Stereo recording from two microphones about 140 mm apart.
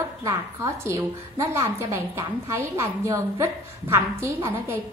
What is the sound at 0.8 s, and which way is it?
A woman's voice, 20° right (ahead or behind).